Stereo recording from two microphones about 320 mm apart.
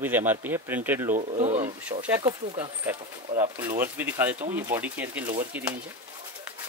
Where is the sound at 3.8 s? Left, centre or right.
Centre.